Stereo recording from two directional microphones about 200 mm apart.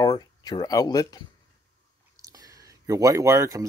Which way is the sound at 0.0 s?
20° left (ahead or behind).